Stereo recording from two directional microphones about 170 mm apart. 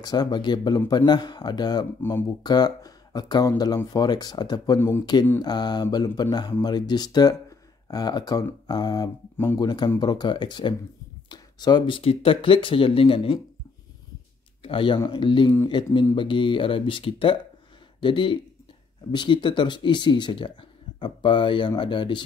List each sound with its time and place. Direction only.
0.0 s speech: 25° left (ahead or behind)
2.0 s speech: 15° left (ahead or behind)
2.4 s speech: 25° left (ahead or behind)
4.7 s speech: 15° left (ahead or behind)
5.4 s speech: 25° left (ahead or behind)
14.6 s speech: 30° left (ahead or behind)